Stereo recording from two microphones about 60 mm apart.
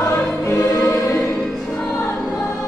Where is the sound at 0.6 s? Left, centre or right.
Left.